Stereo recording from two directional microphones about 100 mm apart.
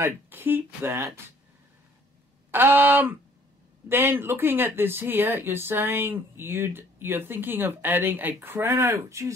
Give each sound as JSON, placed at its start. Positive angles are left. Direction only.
{"t": 0.0, "sound": "speech", "side_deg": -20}
{"t": 2.5, "sound": "speech", "side_deg": -20}